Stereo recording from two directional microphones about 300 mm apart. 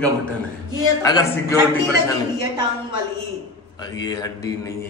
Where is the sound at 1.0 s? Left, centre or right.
Centre.